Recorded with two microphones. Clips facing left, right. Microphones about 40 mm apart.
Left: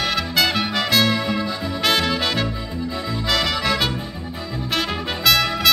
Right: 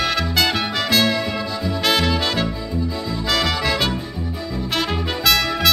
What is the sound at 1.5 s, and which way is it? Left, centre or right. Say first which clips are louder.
Trumpet: right 2 dB; left.